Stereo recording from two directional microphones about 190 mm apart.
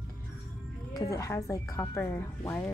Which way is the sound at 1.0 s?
15° left (ahead or behind).